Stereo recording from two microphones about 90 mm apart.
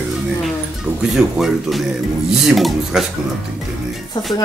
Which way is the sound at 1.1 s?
5° right (ahead or behind).